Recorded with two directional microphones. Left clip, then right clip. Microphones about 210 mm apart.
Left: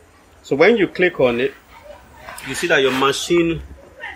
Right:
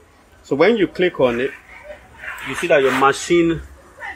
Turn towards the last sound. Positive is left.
turn(degrees=0)  # may be behind; listen again after turning